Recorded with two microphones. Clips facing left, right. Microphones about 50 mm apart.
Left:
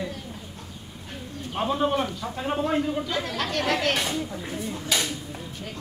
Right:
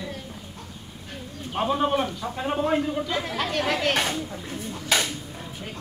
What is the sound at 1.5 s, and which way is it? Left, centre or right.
A man's voice, centre.